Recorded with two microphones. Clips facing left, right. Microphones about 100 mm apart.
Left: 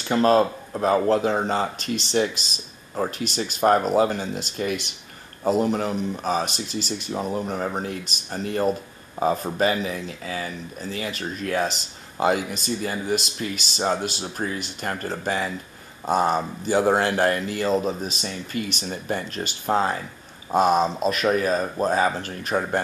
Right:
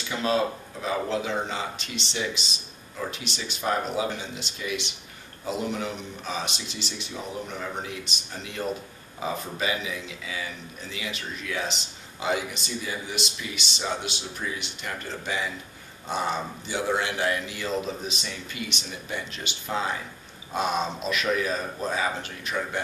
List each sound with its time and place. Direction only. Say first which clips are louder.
0.0 s speech: left 7 dB; 45° left (ahead or behind)